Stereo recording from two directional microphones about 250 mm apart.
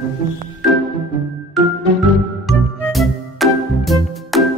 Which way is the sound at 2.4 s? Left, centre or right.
Centre.